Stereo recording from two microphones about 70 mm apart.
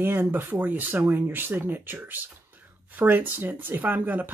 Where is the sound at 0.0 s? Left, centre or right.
Right.